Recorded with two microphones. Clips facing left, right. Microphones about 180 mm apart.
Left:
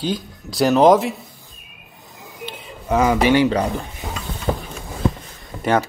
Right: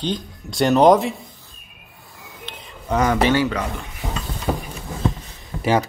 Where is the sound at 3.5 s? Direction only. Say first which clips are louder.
Left 5 dB; 35° left (ahead or behind).